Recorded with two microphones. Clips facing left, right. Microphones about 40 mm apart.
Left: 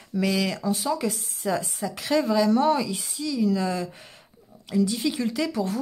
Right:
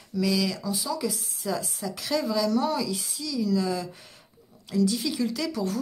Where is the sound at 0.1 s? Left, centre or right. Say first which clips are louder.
Left 1 dB; left.